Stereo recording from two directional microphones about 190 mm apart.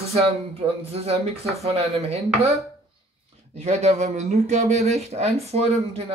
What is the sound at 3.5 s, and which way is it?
Speech, 35° right (ahead or behind).